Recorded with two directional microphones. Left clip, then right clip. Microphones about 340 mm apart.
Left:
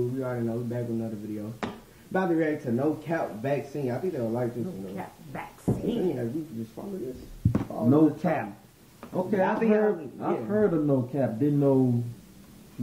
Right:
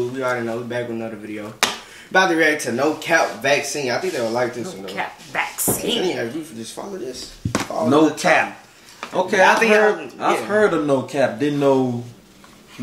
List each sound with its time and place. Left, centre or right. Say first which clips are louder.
0.2 s a woman's voice: right 9 dB; centre
11.7 s speech: right 6 dB; right